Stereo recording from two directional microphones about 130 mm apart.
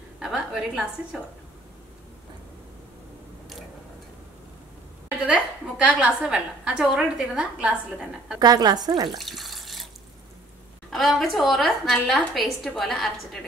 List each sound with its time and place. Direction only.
0.2 s a woman's voice: 5° right (ahead or behind)
5.2 s a woman's voice: 10° right (ahead or behind)
8.4 s speech: 30° right (ahead or behind)
9.2 s water: centre (ahead or behind)
10.9 s a woman's voice: centre (ahead or behind)